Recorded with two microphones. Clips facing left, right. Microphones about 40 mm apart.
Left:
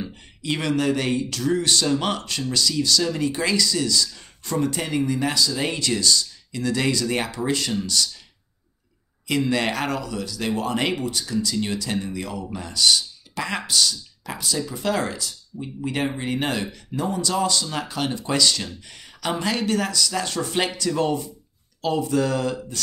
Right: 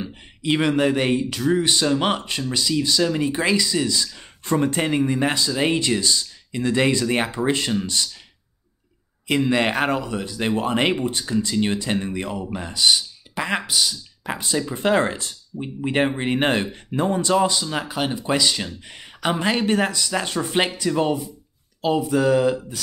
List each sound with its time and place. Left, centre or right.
0.0 s speech: right
9.3 s speech: right
14.2 s speech: right; by 22.8 s centre